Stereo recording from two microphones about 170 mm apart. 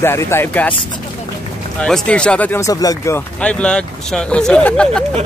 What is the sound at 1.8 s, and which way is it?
Speech, 5° left (ahead or behind).